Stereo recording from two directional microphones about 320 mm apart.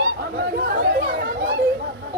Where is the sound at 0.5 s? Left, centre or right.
Right.